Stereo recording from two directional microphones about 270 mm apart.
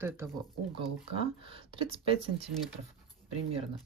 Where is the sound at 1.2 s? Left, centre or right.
Centre.